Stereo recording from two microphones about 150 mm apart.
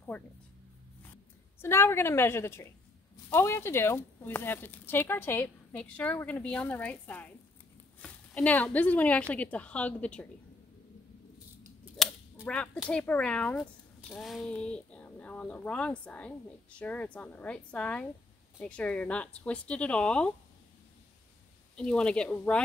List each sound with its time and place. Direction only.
0.1 s speech: 10° left (ahead or behind)
1.6 s speech: 15° left (ahead or behind)
11.3 s scissors: 10° right (ahead or behind)
12.7 s speech: centre (ahead or behind)
21.7 s speech: 5° left (ahead or behind)